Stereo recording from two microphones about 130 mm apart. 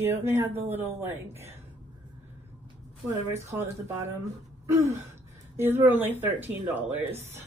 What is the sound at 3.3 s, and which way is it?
Speech, 20° right (ahead or behind).